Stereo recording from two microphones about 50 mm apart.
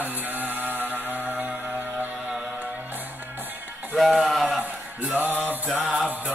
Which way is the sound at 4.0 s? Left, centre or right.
Centre.